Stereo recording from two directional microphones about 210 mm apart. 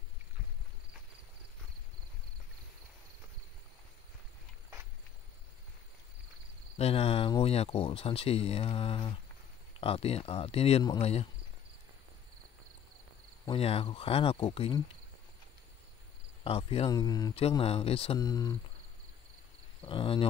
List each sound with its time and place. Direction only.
6.8 s speech: 30° left (ahead or behind)
13.5 s speech: 25° left (ahead or behind)
16.4 s speech: 25° left (ahead or behind)
19.8 s speech: 25° left (ahead or behind)